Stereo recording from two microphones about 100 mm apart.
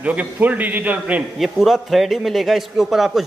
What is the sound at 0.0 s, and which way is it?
A man's voice, 15° right (ahead or behind).